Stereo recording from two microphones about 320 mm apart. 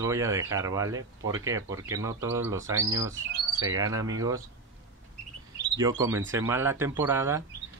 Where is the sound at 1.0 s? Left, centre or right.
Right.